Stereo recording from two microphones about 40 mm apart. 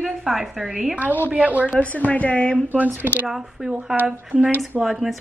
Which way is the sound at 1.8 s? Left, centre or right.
Left.